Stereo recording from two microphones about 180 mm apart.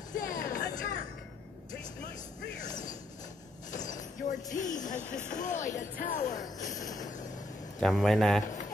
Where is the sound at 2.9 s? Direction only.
45° left (ahead or behind).